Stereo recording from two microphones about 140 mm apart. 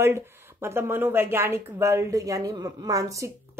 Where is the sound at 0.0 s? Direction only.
15° right (ahead or behind).